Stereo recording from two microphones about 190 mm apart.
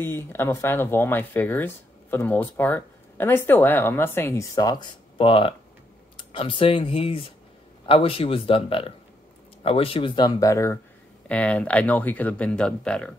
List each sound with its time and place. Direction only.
0.0 s speech: 10° left (ahead or behind)